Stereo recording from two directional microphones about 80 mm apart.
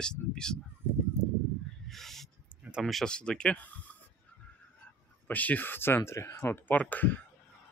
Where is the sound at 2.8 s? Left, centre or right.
Centre.